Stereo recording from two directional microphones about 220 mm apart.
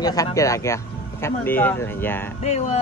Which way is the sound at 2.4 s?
30° left (ahead or behind).